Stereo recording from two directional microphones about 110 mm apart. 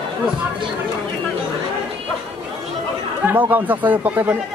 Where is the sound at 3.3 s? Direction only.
15° right (ahead or behind).